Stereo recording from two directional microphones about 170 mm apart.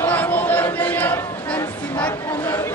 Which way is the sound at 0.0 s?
10° left (ahead or behind).